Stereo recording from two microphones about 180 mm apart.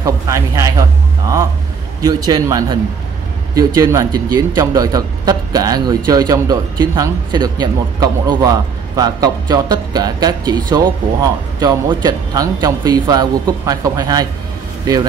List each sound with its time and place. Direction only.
0.0 s speech: 20° right (ahead or behind)
2.0 s speech: 20° right (ahead or behind)